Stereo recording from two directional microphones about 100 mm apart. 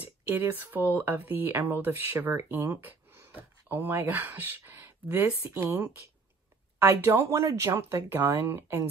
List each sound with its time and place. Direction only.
0.0 s speech: 20° right (ahead or behind)